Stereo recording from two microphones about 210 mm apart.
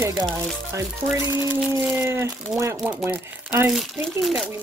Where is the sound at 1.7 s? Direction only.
10° right (ahead or behind).